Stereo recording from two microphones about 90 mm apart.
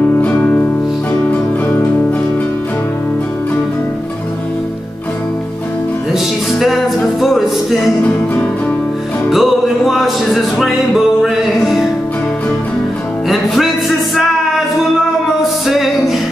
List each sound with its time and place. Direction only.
0.2 s music: 20° left (ahead or behind)
6.1 s music: centre (ahead or behind)
9.3 s music: centre (ahead or behind)
15.6 s music: centre (ahead or behind)